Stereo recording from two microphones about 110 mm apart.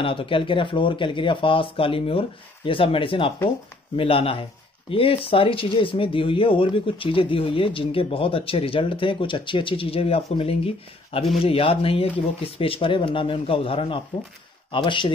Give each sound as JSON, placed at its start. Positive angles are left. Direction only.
{"t": 0.0, "sound": "speech", "side_deg": 55}